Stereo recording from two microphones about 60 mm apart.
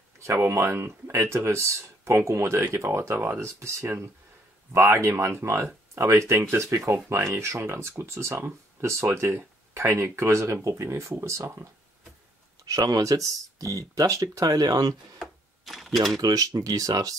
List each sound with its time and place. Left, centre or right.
0.2 s speech: right
12.6 s speech: right
15.1 s typewriter: centre
16.2 s speech: right